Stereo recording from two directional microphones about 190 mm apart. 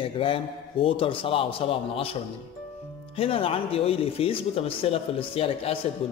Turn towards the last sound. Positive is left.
turn(degrees=30)  # may be behind; listen again after turning